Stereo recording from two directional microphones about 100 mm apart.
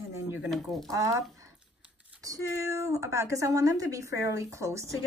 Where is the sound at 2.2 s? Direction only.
30° right (ahead or behind).